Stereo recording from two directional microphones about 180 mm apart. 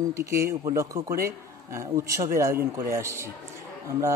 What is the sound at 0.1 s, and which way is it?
A man's voice, 15° right (ahead or behind).